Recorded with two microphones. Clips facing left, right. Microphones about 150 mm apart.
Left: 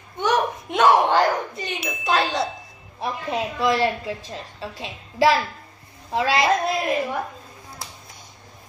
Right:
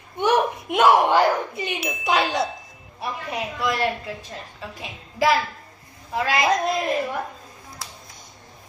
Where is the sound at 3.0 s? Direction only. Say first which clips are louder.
Left 3 dB; 25° left (ahead or behind).